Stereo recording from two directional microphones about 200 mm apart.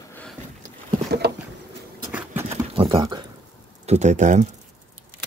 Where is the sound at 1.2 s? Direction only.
55° right (ahead or behind).